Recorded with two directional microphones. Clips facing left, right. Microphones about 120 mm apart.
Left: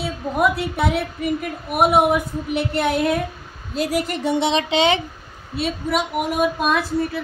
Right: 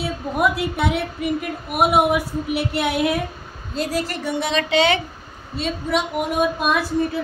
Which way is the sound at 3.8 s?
15° left (ahead or behind).